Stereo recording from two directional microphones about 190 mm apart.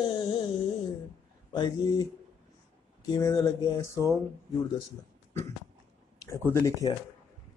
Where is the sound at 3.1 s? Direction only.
20° left (ahead or behind).